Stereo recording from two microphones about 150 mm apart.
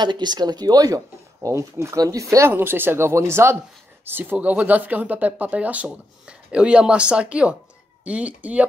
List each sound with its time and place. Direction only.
0.0 s speech: 30° right (ahead or behind); by 8.6 s 10° right (ahead or behind)